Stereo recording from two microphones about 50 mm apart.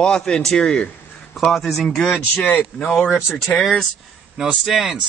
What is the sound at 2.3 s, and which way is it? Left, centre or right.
Speech, left.